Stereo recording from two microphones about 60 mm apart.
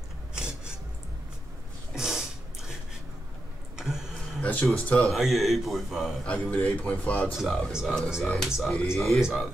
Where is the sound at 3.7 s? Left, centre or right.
Centre.